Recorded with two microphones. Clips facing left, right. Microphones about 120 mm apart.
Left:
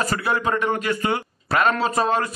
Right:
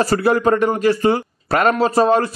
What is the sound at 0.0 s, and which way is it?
Speech, 35° right (ahead or behind).